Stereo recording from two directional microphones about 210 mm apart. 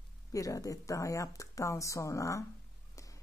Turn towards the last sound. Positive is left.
turn(degrees=15)  # may be behind; listen again after turning